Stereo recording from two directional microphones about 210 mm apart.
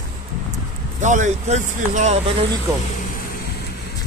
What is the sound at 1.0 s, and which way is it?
Speech, 35° right (ahead or behind).